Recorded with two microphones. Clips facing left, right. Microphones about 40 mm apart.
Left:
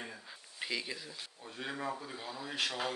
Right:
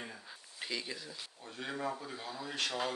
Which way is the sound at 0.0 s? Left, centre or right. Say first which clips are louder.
Left 1 dB; centre.